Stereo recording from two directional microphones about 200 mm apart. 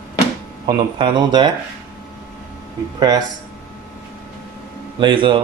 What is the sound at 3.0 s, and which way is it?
Speech, 20° right (ahead or behind).